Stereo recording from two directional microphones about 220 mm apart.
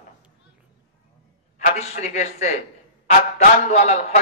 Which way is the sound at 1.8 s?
30° left (ahead or behind).